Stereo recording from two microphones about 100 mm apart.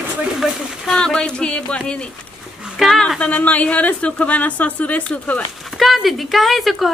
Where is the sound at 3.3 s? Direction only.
15° left (ahead or behind).